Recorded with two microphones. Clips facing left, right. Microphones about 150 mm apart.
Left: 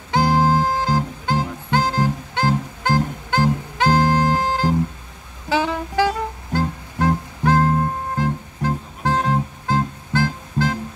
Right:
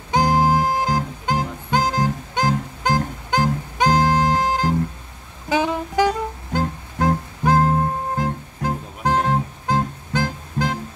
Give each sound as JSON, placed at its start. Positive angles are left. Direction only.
{"t": 0.1, "sound": "music", "side_deg": -15}